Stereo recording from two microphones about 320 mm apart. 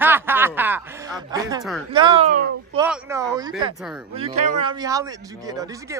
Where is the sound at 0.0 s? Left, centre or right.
Centre.